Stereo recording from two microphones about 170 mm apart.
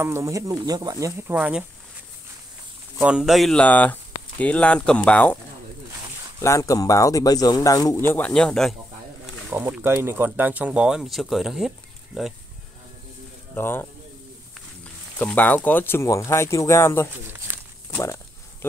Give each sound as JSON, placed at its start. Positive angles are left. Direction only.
{"t": 0.0, "sound": "speech", "side_deg": -15}
{"t": 3.0, "sound": "speech", "side_deg": -5}
{"t": 6.4, "sound": "a man's voice", "side_deg": 20}
{"t": 9.5, "sound": "speech", "side_deg": -15}
{"t": 13.6, "sound": "speech", "side_deg": 15}
{"t": 15.1, "sound": "speech", "side_deg": 10}
{"t": 17.9, "sound": "walk", "side_deg": 15}